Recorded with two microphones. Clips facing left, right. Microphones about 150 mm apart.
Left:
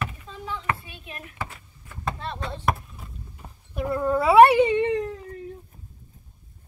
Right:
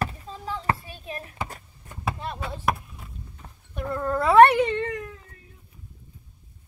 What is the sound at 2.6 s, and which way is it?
Cat, centre (ahead or behind).